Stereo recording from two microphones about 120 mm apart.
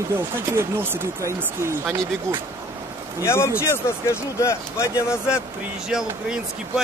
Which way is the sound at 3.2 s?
20° left (ahead or behind).